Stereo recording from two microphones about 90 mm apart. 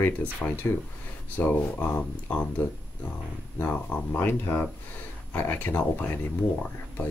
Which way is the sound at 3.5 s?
20° left (ahead or behind).